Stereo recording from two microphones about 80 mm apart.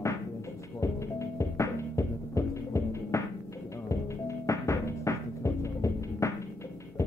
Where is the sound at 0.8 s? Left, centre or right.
Left.